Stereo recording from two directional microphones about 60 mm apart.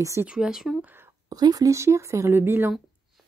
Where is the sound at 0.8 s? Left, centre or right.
Right.